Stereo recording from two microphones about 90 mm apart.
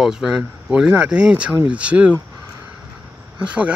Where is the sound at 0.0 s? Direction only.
5° right (ahead or behind).